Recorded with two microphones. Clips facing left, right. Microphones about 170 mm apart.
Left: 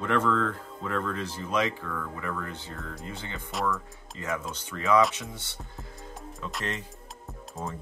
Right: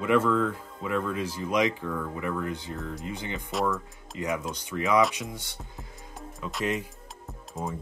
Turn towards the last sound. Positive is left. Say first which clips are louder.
# right 2 dB
turn(degrees=0)  # may be behind; listen again after turning